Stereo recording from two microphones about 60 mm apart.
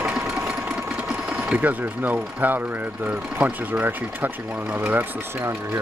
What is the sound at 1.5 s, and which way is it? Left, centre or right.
Speech, right.